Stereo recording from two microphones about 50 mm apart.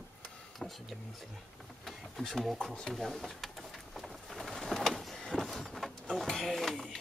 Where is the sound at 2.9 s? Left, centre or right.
Centre.